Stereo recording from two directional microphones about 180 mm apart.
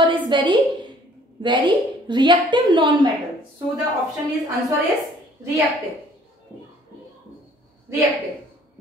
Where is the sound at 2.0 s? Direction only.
25° right (ahead or behind).